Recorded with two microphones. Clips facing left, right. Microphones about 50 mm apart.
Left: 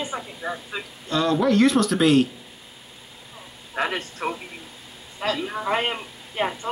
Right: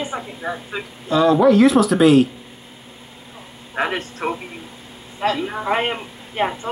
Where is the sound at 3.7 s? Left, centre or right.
Right.